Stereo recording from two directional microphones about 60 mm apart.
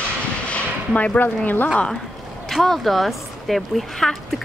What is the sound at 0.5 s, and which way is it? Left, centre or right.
Speech, left.